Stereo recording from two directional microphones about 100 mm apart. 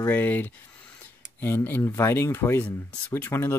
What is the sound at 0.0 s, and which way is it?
Speech, 20° left (ahead or behind).